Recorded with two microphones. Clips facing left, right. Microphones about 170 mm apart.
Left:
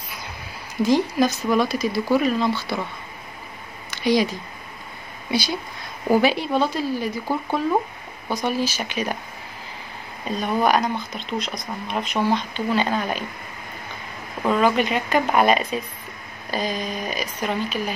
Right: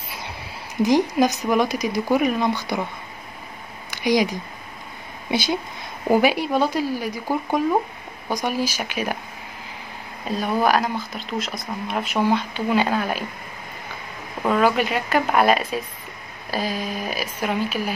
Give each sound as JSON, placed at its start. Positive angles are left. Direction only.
{"t": 0.8, "sound": "speech", "side_deg": -15}
{"t": 3.9, "sound": "speech", "side_deg": -15}
{"t": 6.0, "sound": "speech", "side_deg": -10}
{"t": 10.3, "sound": "speech", "side_deg": -5}
{"t": 14.4, "sound": "speech", "side_deg": -5}